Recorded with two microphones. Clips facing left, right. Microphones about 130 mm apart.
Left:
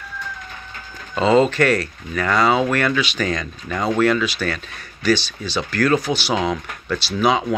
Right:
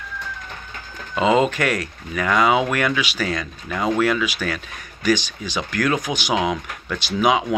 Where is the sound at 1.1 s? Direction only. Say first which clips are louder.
Left 2 dB; 15° right (ahead or behind).